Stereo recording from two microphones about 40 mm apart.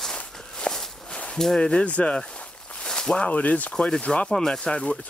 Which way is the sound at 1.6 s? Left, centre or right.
Left.